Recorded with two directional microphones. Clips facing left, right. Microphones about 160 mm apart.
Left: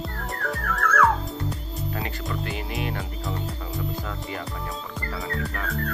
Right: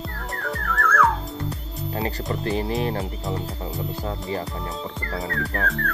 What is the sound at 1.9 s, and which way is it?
Speech, 35° right (ahead or behind).